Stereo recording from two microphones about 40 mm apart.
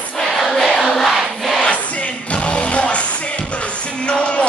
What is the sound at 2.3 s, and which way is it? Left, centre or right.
Music, left.